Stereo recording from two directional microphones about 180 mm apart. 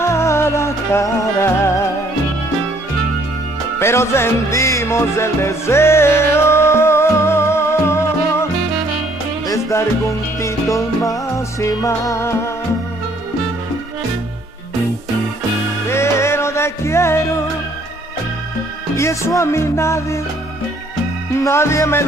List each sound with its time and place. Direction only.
0.0 s music: 15° left (ahead or behind)
3.8 s music: 15° left (ahead or behind)
9.5 s music: 15° left (ahead or behind)
15.9 s music: 15° left (ahead or behind)
18.9 s music: 15° left (ahead or behind)
21.4 s music: 15° left (ahead or behind)